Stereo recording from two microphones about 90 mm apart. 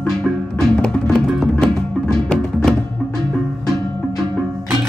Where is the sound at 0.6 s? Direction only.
10° left (ahead or behind).